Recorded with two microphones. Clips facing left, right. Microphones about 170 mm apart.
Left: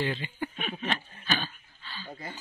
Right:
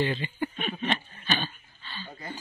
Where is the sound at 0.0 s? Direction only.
Centre (ahead or behind).